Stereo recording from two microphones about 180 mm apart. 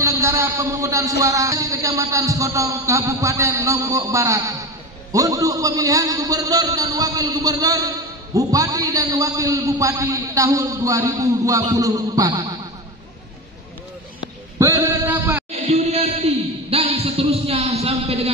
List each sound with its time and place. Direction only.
0.0 s a man's voice: 15° right (ahead or behind)
1.2 s a sound: 20° right (ahead or behind)
5.1 s a man's voice: 20° right (ahead or behind)
14.6 s music: 15° right (ahead or behind)
15.7 s music: 35° right (ahead or behind)